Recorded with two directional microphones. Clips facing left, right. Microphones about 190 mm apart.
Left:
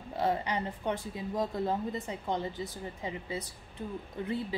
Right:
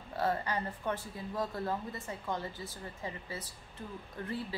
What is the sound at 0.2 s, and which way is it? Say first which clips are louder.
A woman's voice: left 2 dB; 15° left (ahead or behind).